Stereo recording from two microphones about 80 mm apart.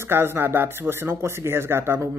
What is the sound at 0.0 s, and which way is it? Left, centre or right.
Speech, right.